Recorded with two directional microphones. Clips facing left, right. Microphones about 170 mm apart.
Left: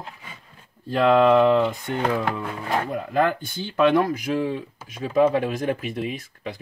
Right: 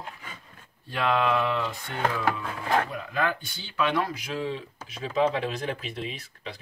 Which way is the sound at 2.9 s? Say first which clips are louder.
Left 7 dB; 45° left (ahead or behind).